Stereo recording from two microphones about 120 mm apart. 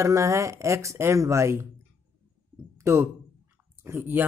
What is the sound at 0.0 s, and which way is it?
Speech, 25° right (ahead or behind).